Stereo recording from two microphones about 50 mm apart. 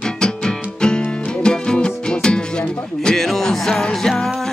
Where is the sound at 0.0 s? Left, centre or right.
Centre.